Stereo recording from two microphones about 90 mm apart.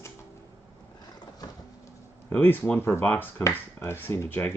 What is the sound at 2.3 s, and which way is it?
Speech, 20° left (ahead or behind).